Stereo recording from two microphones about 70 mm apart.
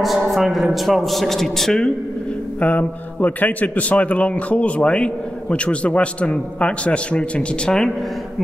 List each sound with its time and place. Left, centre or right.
0.0 s a man's voice: centre
2.6 s a man's voice: left